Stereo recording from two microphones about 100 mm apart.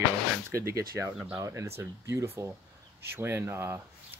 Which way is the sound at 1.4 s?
30° right (ahead or behind).